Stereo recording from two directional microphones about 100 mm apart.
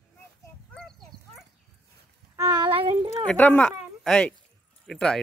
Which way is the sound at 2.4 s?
40° right (ahead or behind).